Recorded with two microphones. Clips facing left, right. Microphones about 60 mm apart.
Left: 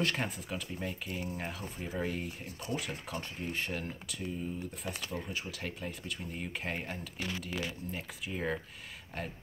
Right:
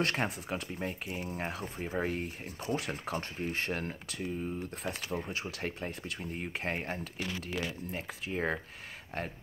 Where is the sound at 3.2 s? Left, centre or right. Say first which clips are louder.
Right 3 dB; right.